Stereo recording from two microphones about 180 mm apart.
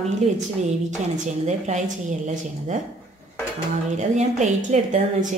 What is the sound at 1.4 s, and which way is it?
A woman's voice, 40° right (ahead or behind).